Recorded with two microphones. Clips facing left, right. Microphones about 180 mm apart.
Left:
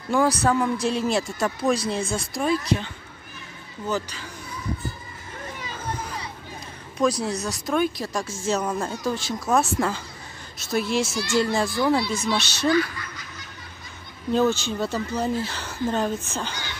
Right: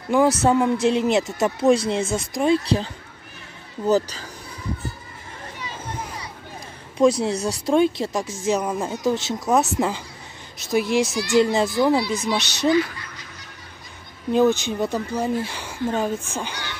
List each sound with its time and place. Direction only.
0.1 s speech: 20° right (ahead or behind); by 4.3 s 40° right (ahead or behind)
7.0 s speech: 25° right (ahead or behind)
14.3 s speech: 15° right (ahead or behind)